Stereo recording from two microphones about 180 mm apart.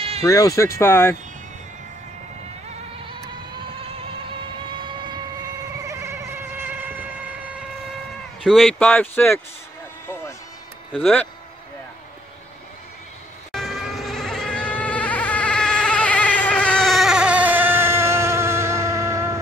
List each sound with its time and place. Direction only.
0.2 s speech: 20° left (ahead or behind)
5.9 s vehicle: 15° right (ahead or behind)
8.5 s speech: centre (ahead or behind)
10.9 s speech: 5° left (ahead or behind)
13.5 s vehicle: centre (ahead or behind); by 19.3 s 15° right (ahead or behind)